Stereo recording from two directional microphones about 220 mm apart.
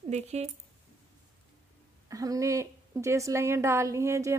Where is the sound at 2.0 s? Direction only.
15° right (ahead or behind).